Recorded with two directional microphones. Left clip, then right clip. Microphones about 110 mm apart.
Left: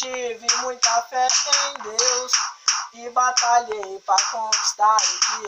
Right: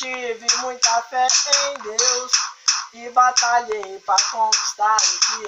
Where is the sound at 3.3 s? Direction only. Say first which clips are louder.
Even; 40° left (ahead or behind).